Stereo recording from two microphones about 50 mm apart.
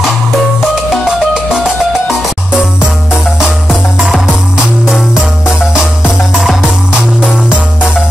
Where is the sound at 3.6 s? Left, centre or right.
Centre.